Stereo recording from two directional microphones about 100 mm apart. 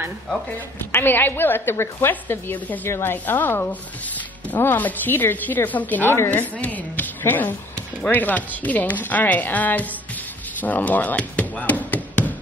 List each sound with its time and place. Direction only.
0.9 s a woman's voice: 20° left (ahead or behind)